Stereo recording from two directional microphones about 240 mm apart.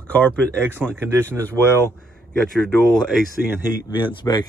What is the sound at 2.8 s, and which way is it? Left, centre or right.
Speech, centre.